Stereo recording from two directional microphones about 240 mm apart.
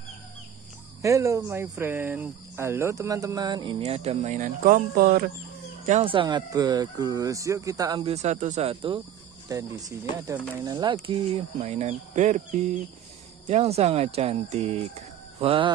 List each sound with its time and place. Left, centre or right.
1.0 s speech: centre; by 5.3 s right
5.9 s speech: right